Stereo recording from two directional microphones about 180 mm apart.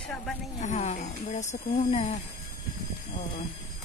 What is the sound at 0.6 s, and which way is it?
Speech, 40° left (ahead or behind).